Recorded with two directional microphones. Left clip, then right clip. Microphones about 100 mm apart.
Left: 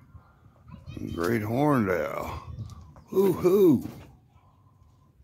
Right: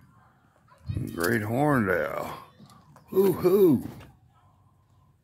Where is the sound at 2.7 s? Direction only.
10° left (ahead or behind).